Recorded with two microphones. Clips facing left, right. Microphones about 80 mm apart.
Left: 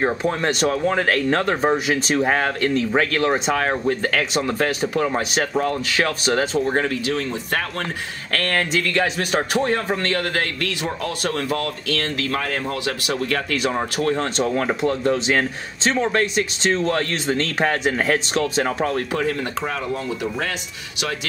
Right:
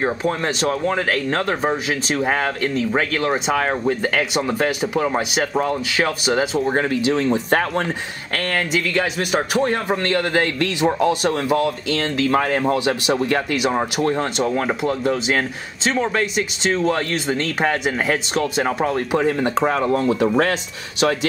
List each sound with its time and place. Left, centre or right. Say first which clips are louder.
0.0 s speech: even; centre
7.0 s speech: right 5 dB; right
8.3 s speech: even; centre
10.0 s speech: right 4 dB; centre
13.6 s speech: right 2 dB; centre
19.2 s speech: right 6 dB; right